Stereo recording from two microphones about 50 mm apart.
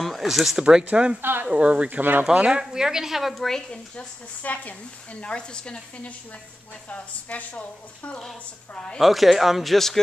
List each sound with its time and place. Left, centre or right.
0.0 s speech: centre
0.9 s speech: right
1.2 s speech: right
1.5 s speech: right
2.3 s speech: right
2.6 s a woman's voice: centre
3.4 s speech: centre
4.4 s speech: left
5.2 s speech: centre
6.9 s speech: left
8.7 s speech: centre
9.0 s speech: centre